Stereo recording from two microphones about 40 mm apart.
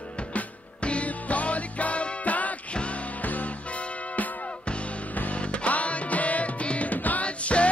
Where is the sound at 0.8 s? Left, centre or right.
Left.